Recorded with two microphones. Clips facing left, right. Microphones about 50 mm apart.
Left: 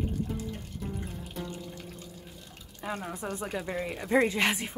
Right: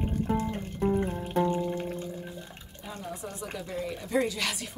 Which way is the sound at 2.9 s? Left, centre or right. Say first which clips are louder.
Left 3 dB; left.